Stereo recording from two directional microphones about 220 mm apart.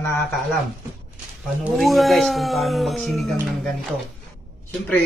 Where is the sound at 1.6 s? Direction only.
Centre (ahead or behind).